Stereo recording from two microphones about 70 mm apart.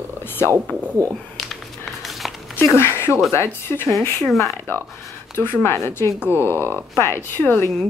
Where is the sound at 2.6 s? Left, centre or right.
Left.